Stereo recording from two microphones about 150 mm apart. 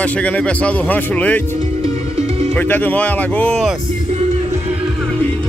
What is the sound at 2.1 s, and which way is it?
Music, 45° right (ahead or behind).